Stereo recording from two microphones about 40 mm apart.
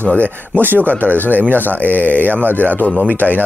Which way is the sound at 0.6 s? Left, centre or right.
Right.